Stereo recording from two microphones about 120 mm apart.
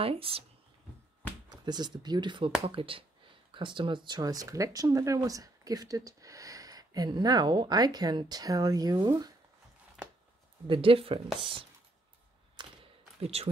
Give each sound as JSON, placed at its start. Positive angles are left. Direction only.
{"t": 0.0, "sound": "speech", "side_deg": -50}
{"t": 1.5, "sound": "speech", "side_deg": -35}
{"t": 10.7, "sound": "speech", "side_deg": -50}
{"t": 12.6, "sound": "a sound", "side_deg": -40}
{"t": 13.2, "sound": "speech", "side_deg": -60}